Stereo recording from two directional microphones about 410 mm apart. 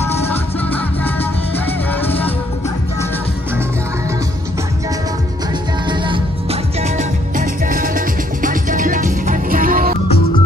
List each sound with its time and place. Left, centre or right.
0.3 s music: centre
5.9 s music: centre